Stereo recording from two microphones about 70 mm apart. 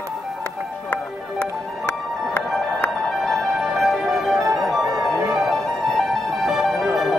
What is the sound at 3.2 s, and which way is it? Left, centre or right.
Music, centre.